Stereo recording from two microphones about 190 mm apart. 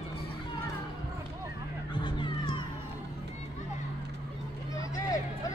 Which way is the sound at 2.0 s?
25° left (ahead or behind).